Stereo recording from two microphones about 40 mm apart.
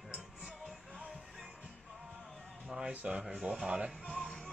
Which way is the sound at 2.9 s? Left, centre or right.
Right.